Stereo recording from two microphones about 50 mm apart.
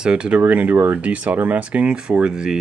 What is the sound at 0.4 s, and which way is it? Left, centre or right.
Speech, right.